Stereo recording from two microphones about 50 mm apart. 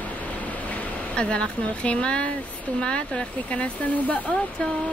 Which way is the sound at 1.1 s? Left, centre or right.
Centre.